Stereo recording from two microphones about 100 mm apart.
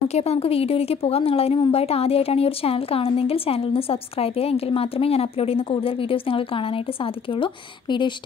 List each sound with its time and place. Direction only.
0.1 s a woman's voice: 90° left; by 8.1 s 55° left (ahead or behind)